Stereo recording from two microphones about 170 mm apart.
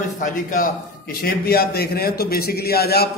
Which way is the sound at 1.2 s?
65° left (ahead or behind).